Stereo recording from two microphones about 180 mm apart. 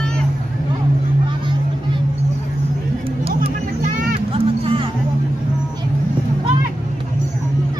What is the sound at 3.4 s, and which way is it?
Vehicle, 35° right (ahead or behind).